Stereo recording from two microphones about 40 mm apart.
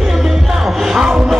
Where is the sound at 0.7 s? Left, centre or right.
Centre.